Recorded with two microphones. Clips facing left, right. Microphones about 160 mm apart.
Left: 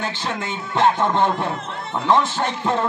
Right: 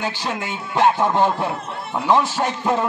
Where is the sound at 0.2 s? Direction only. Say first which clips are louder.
Even; 10° right (ahead or behind).